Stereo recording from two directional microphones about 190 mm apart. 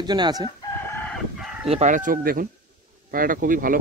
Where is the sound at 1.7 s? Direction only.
40° right (ahead or behind).